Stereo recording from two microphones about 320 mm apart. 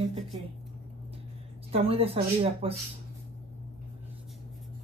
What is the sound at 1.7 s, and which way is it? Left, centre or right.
Speech, centre.